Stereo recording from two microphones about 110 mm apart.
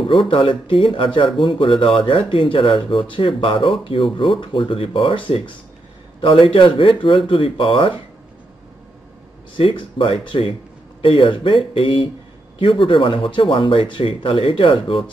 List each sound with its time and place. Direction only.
0.0 s speech: 55° left (ahead or behind)
9.6 s speech: 55° left (ahead or behind)